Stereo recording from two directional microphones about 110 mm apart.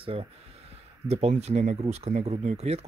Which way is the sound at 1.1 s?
75° right (ahead or behind).